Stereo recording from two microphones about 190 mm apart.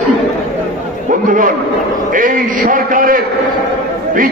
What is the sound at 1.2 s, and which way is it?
A man's voice, 45° right (ahead or behind).